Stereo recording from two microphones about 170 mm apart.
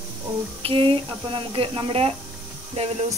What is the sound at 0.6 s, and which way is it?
Speech, 30° right (ahead or behind).